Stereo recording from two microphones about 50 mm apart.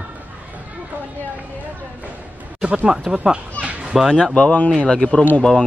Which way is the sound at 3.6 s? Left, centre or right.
Left.